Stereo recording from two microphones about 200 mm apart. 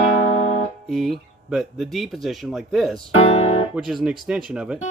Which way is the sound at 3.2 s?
30° left (ahead or behind).